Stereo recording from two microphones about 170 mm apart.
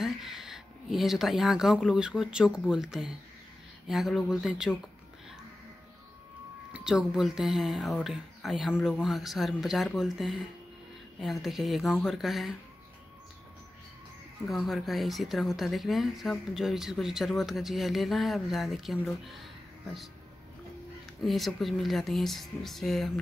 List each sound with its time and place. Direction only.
0.0 s speech: centre (ahead or behind)
6.7 s speech: 5° right (ahead or behind)
14.5 s speech: centre (ahead or behind)
21.2 s speech: centre (ahead or behind)